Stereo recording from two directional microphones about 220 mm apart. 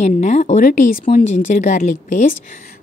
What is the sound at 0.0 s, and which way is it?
A woman's voice, 30° left (ahead or behind).